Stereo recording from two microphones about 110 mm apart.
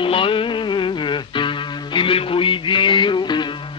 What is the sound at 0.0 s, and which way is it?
Music, 50° left (ahead or behind).